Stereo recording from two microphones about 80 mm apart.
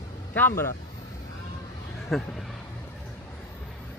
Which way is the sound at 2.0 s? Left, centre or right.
Centre.